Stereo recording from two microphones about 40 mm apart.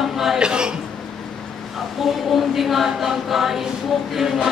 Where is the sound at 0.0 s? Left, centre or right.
Centre.